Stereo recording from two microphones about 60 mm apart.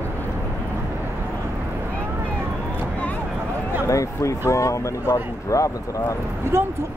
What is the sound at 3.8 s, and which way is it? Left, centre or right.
Speech, left.